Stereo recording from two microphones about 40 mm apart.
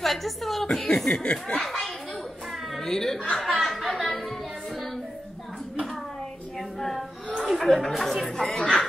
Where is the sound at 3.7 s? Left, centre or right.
Centre.